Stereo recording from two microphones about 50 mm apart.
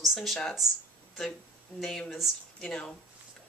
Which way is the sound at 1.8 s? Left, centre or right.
Centre.